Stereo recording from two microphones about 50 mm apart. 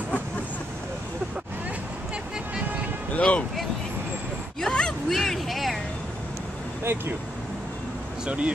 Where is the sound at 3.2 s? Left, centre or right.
Left.